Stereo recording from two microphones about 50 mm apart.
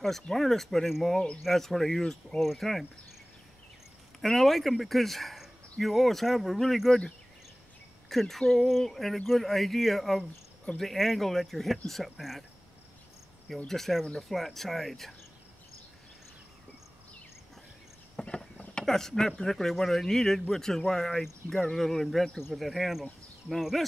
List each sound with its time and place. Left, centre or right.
0.0 s speech: centre
4.2 s speech: centre
8.1 s speech: centre
13.7 s speech: centre
18.2 s a sound: centre
18.8 s speech: centre